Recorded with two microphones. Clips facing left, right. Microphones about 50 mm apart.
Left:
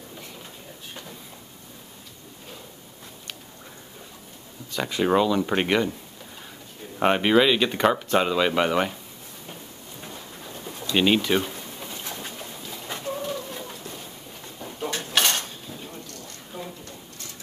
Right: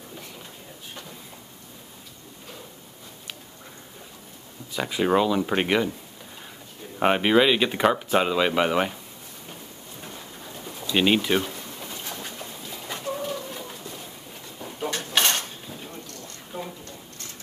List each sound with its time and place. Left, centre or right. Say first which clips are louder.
4.7 s speech: even; centre
7.0 s speech: even; centre
10.9 s speech: even; centre
12.8 s bird: even; centre
15.1 s dishes: even; centre
16.5 s a sound: right 2 dB; centre